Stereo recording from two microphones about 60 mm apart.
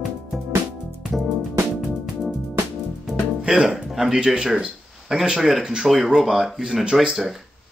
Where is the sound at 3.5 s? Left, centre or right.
Centre.